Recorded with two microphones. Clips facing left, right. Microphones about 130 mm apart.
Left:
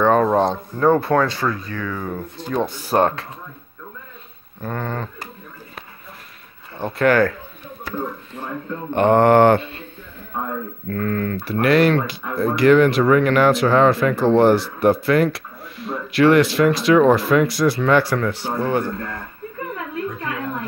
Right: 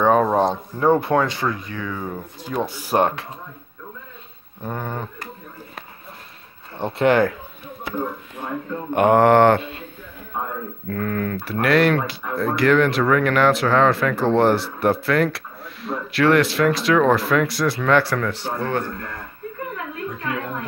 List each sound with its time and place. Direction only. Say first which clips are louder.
0.0 s speech: left 1 dB; 5° right (ahead or behind)
4.6 s speech: left 2 dB; 15° right (ahead or behind)
6.8 s speech: left 1 dB; 25° right (ahead or behind)
8.9 s speech: left 1 dB; 10° right (ahead or behind)
9.6 s speech: right 1 dB; 10° right (ahead or behind)
10.9 s speech: left 2 dB; 5° right (ahead or behind); by 18.9 s 10° left (ahead or behind)